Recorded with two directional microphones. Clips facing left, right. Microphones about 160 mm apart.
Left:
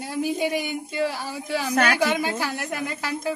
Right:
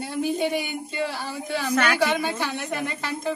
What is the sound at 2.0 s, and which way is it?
Speech, 5° left (ahead or behind).